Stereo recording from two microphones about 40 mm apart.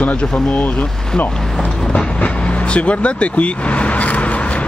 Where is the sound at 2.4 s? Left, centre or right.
Left.